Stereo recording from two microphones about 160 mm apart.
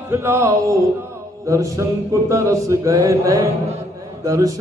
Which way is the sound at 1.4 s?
20° right (ahead or behind).